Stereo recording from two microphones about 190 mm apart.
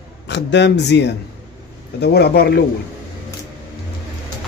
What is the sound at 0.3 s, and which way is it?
Speech, 65° left (ahead or behind).